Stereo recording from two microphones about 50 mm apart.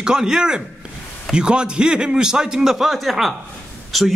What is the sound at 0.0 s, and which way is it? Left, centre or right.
A man's voice, centre.